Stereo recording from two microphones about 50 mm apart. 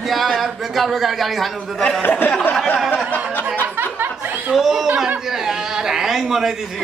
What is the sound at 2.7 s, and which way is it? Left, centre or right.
Speech, centre.